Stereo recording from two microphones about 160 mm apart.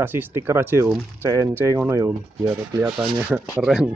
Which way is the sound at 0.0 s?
15° right (ahead or behind).